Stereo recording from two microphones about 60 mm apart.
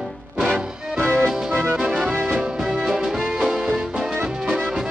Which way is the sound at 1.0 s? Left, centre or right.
Left.